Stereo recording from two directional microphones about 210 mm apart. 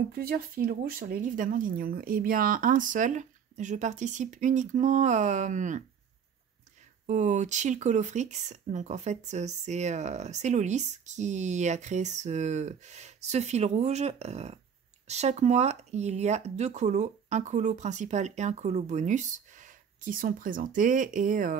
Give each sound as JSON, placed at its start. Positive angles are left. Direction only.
{"t": 0.1, "sound": "speech", "side_deg": -45}
{"t": 7.1, "sound": "speech", "side_deg": -35}